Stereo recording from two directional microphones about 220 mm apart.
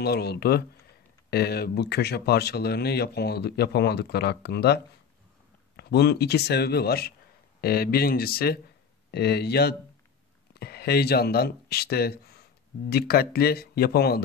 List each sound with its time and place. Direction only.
0.0 s speech: 45° left (ahead or behind)